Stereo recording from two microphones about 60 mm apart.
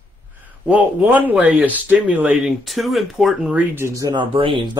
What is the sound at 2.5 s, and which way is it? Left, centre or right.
Speech, centre.